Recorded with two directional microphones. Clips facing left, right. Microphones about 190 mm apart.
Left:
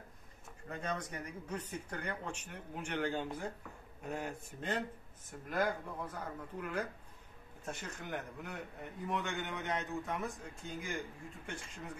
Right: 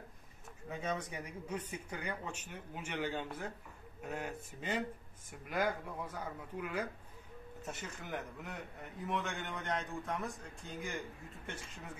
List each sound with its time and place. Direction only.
0.7 s a man's voice: 5° right (ahead or behind)